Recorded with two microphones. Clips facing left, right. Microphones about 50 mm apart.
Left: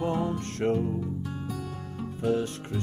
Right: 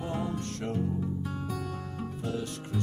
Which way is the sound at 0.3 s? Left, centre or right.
Left.